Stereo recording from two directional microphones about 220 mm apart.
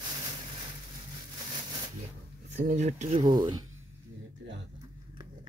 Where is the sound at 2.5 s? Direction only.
35° right (ahead or behind).